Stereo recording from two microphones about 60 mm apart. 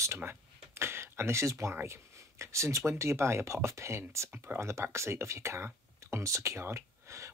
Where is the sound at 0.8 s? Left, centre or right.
Right.